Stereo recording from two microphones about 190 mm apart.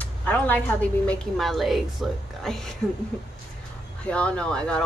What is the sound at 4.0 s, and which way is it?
Speech, 5° left (ahead or behind).